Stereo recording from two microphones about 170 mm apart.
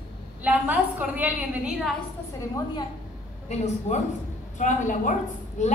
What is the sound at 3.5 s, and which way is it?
A woman's voice, 40° left (ahead or behind).